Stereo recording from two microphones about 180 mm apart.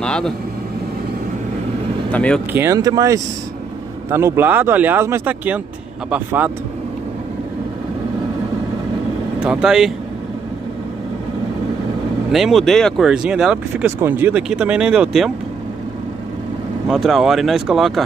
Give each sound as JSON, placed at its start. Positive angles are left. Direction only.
{"t": 0.0, "sound": "vehicle", "side_deg": 5}
{"t": 2.1, "sound": "speech", "side_deg": 5}
{"t": 2.5, "sound": "speech", "side_deg": -15}
{"t": 9.4, "sound": "speech", "side_deg": -5}
{"t": 12.3, "sound": "speech", "side_deg": 0}
{"t": 16.9, "sound": "speech", "side_deg": 0}